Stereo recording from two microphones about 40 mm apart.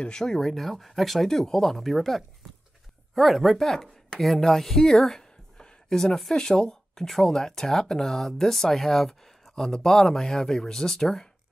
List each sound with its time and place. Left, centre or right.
0.1 s speech: centre